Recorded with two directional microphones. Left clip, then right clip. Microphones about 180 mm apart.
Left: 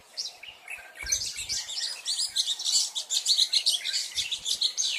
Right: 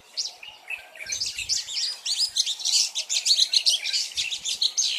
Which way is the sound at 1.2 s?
30° left (ahead or behind).